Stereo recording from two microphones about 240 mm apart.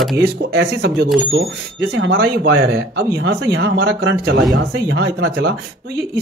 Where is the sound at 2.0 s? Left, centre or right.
Right.